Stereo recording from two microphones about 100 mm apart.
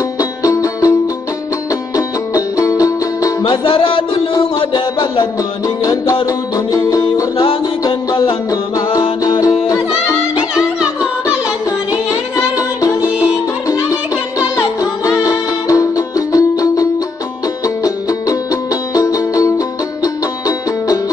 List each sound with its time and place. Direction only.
0.2 s music: 35° left (ahead or behind)
2.0 s music: 35° left (ahead or behind)
3.4 s music: 60° left (ahead or behind)
6.7 s music: 35° left (ahead or behind)
8.5 s music: 35° left (ahead or behind)
10.5 s music: 10° right (ahead or behind)
15.2 s music: 35° left (ahead or behind)
17.8 s music: 35° left (ahead or behind)